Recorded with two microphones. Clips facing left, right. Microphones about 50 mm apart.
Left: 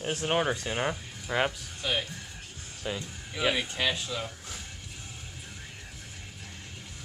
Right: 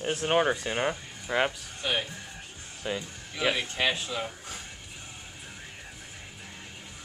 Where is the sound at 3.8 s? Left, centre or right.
Centre.